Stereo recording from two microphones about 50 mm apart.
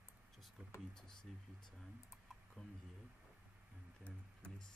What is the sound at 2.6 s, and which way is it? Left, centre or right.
Speech, centre.